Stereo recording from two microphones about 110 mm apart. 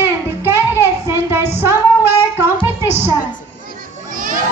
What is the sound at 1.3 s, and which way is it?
Female singing, 20° right (ahead or behind).